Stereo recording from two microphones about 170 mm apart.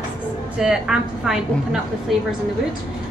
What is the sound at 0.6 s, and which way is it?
A woman's voice, 5° right (ahead or behind).